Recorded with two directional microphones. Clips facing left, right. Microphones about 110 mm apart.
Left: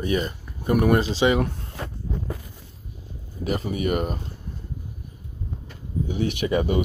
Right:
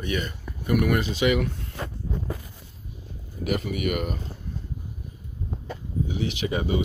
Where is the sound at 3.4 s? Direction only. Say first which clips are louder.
Left 1 dB; 35° left (ahead or behind).